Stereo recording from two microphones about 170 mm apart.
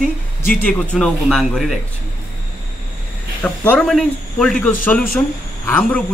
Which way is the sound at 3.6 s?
5° left (ahead or behind).